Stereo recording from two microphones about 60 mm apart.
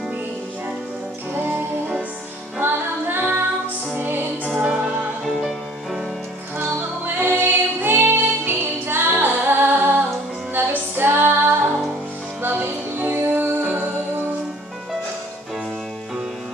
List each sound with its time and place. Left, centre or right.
2.6 s music: right
4.6 s music: centre
7.1 s music: right
10.5 s female singing: right
12.4 s music: right